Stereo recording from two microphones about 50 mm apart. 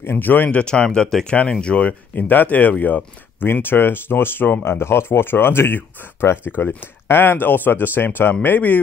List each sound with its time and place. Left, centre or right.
0.0 s speech: left
0.5 s speech: left
2.1 s speech: left
3.6 s speech: left